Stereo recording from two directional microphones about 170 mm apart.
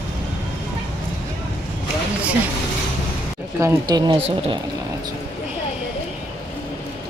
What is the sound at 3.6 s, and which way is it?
Speech, 15° right (ahead or behind).